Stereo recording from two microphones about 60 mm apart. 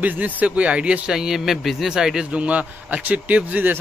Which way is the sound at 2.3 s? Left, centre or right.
Right.